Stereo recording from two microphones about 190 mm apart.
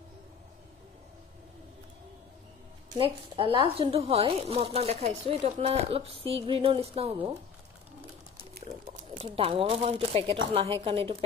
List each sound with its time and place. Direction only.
2.9 s speech: 30° right (ahead or behind)
8.9 s speech: 30° right (ahead or behind)